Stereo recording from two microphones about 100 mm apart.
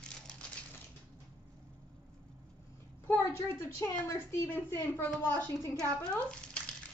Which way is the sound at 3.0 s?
25° left (ahead or behind).